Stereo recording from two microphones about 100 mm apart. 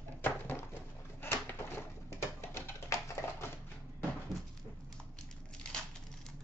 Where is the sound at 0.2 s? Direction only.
20° left (ahead or behind).